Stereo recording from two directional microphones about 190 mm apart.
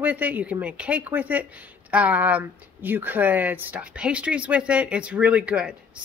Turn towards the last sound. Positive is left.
turn(degrees=-5)  # may be behind; listen again after turning